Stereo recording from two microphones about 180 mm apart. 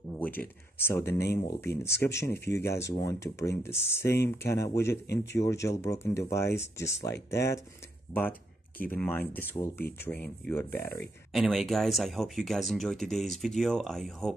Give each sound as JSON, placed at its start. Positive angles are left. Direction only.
{"t": 0.2, "sound": "speech", "side_deg": 10}
{"t": 5.0, "sound": "speech", "side_deg": 65}
{"t": 5.4, "sound": "speech", "side_deg": 15}
{"t": 11.3, "sound": "speech", "side_deg": 0}